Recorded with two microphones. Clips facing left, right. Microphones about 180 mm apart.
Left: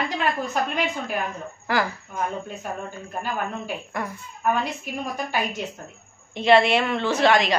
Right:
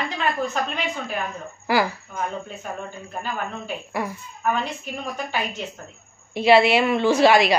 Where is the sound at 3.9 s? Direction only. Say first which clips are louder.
Right 4 dB; 5° right (ahead or behind).